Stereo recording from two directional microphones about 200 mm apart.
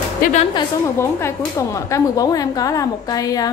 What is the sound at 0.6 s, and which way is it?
Speech, 15° left (ahead or behind).